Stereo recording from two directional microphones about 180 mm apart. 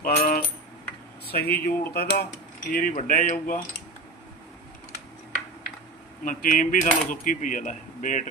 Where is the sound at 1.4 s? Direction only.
60° left (ahead or behind).